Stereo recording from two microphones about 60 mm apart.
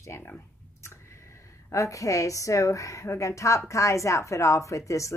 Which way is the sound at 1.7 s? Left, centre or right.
Left.